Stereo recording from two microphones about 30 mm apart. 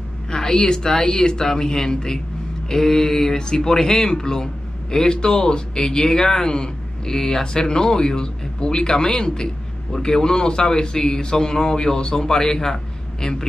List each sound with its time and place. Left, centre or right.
0.3 s a woman's voice: centre
1.4 s a sound: centre
4.1 s a man's voice: left